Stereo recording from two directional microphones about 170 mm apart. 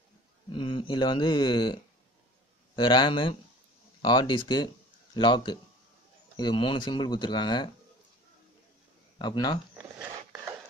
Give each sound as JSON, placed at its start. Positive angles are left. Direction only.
{"t": 0.5, "sound": "speech", "side_deg": 30}
{"t": 9.2, "sound": "speech", "side_deg": 25}